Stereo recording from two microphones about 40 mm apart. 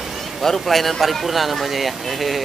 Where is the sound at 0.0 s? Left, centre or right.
Centre.